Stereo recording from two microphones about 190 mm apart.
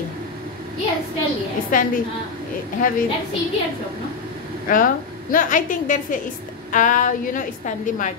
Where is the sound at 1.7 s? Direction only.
45° left (ahead or behind).